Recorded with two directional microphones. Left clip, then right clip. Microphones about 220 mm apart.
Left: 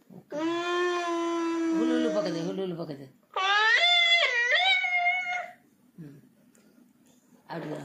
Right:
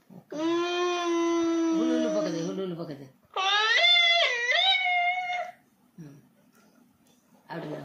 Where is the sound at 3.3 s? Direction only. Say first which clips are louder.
Left 1 dB; 10° left (ahead or behind).